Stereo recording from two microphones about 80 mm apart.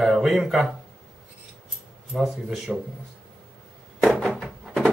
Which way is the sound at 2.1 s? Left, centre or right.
Centre.